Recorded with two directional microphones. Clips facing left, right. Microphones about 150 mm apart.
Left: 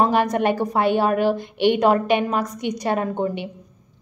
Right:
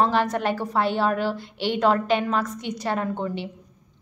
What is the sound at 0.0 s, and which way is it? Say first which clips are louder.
A woman's voice: left 3 dB; 15° left (ahead or behind).